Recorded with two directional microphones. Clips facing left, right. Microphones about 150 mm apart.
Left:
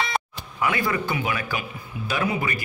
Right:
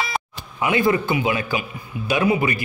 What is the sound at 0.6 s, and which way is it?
A man's voice, 25° right (ahead or behind).